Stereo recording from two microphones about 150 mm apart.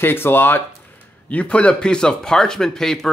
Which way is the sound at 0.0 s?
15° left (ahead or behind).